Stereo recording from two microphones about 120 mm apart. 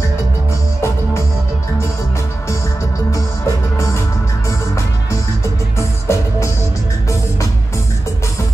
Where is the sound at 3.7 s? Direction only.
25° left (ahead or behind).